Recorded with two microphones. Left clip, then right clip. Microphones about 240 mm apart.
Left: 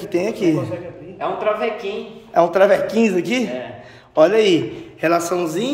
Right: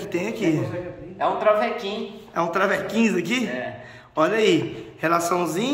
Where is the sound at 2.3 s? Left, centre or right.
Centre.